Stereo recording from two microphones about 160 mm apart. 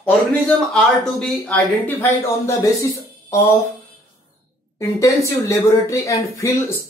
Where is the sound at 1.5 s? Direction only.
15° left (ahead or behind).